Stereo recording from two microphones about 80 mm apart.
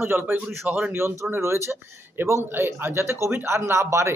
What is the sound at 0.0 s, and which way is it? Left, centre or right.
Speech, right.